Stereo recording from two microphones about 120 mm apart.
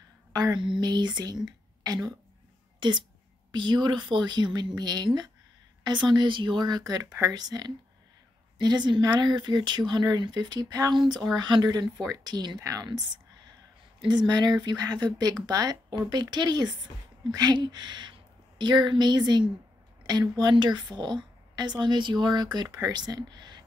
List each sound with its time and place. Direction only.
0.3 s a woman's voice: 35° right (ahead or behind)
14.0 s a woman's voice: 35° right (ahead or behind)